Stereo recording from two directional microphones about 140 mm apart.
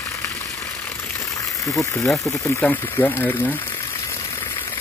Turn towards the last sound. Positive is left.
turn(degrees=15)  # may be behind; listen again after turning